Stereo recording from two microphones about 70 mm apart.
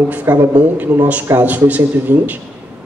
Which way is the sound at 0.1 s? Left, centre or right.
Right.